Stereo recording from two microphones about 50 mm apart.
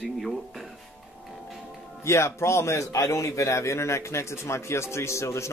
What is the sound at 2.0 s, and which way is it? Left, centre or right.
A man's voice, left.